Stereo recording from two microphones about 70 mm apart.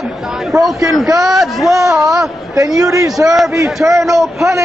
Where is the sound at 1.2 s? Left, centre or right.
Centre.